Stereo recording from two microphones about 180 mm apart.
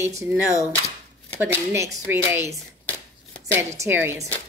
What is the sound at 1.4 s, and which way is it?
Speech, 15° right (ahead or behind).